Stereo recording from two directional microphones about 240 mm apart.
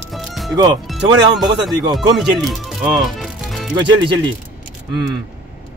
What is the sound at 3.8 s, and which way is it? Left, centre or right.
Speech, centre.